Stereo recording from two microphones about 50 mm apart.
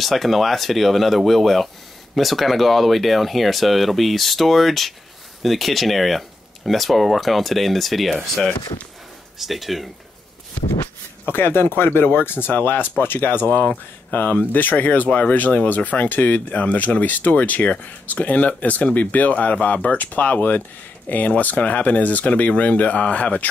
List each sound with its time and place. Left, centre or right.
0.0 s speech: centre
9.4 s speech: centre
11.2 s speech: left